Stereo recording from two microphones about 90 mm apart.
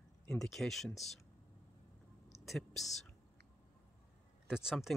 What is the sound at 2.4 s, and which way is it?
Speech, centre (ahead or behind).